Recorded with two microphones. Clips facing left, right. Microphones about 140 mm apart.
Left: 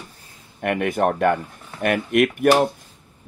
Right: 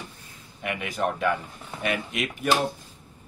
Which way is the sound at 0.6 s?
55° left (ahead or behind).